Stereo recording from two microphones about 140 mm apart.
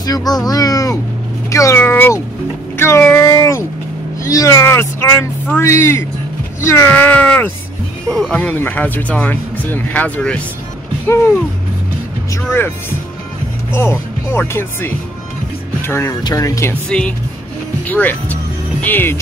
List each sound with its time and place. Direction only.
0.0 s speech: 25° left (ahead or behind); by 10.4 s 10° left (ahead or behind)
12.3 s speech: 20° left (ahead or behind)
16.9 s speech: 5° left (ahead or behind)